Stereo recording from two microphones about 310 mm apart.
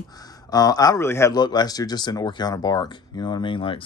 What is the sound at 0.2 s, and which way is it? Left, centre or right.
Speech, centre.